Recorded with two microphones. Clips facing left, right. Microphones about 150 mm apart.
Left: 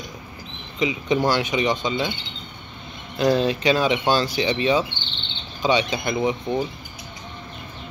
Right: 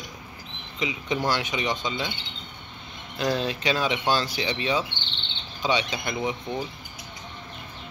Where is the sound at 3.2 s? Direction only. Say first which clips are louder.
Left 7 dB; 40° left (ahead or behind).